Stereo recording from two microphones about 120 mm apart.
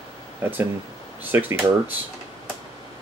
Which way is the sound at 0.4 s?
20° right (ahead or behind).